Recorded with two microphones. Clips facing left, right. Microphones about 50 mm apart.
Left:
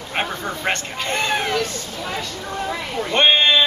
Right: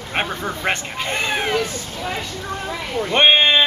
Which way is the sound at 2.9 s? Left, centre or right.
Centre.